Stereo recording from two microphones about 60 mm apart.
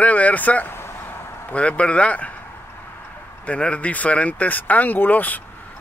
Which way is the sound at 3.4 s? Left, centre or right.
Left.